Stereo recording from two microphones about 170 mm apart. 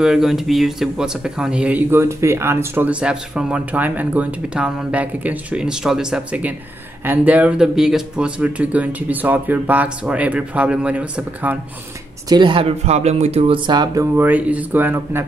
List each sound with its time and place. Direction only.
0.0 s speech: centre (ahead or behind)
12.3 s speech: 30° right (ahead or behind)
14.1 s speech: 10° right (ahead or behind)